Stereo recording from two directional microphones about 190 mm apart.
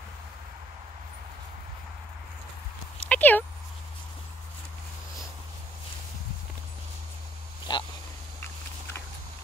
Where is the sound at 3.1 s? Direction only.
10° left (ahead or behind).